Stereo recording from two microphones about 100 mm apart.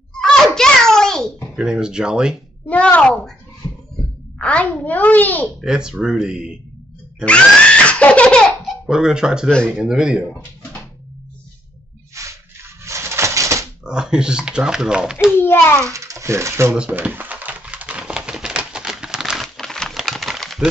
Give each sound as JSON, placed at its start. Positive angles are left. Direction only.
{"t": 0.2, "sound": "a sound", "side_deg": 5}
{"t": 1.6, "sound": "speech", "side_deg": -10}
{"t": 2.7, "sound": "a child's voice", "side_deg": 15}
{"t": 4.4, "sound": "a child's voice", "side_deg": 15}
{"t": 5.7, "sound": "speech", "side_deg": -10}
{"t": 7.2, "sound": "laughter", "side_deg": 10}
{"t": 8.6, "sound": "speech", "side_deg": -5}
{"t": 12.1, "sound": "a sound", "side_deg": -30}
{"t": 12.8, "sound": "typewriter", "side_deg": -30}
{"t": 13.8, "sound": "speech", "side_deg": -5}
{"t": 15.3, "sound": "a child's voice", "side_deg": 20}
{"t": 15.8, "sound": "speech", "side_deg": -30}
{"t": 16.7, "sound": "a sound", "side_deg": -10}